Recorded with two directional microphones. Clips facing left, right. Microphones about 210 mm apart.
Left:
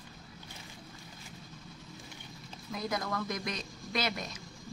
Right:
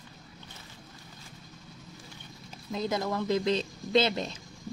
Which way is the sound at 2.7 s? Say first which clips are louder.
Right 5 dB; 25° right (ahead or behind).